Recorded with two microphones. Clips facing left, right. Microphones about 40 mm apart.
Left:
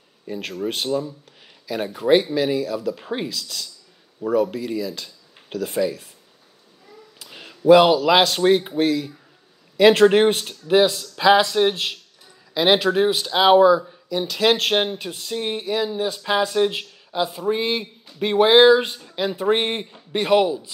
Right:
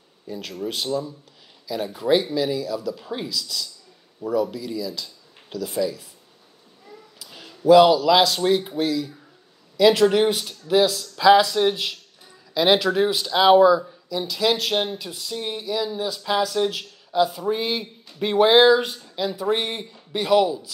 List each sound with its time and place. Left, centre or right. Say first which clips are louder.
0.3 s speech: left 3 dB; left
1.9 s speech: left 3 dB; left
7.2 s speech: left 5 dB; left
11.7 s speech: left 1 dB; centre
14.2 s speech: left 3 dB; left; by 18.8 s centre
18.8 s speech: left 2 dB; left